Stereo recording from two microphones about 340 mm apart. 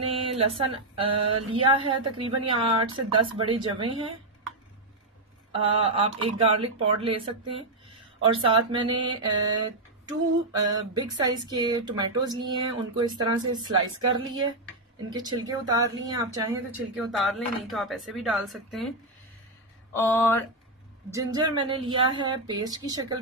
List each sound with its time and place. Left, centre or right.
0.0 s speech: centre
5.6 s speech: centre
8.2 s speech: centre
21.1 s speech: centre